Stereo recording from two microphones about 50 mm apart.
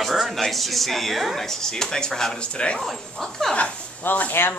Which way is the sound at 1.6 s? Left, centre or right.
Centre.